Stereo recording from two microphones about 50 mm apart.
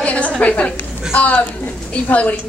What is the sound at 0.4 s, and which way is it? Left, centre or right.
A woman's voice, left.